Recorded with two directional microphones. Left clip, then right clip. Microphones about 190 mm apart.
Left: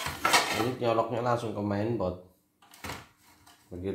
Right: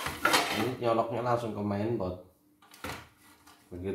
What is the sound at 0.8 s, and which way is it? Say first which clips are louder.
Speech: left 1 dB; 40° left (ahead or behind).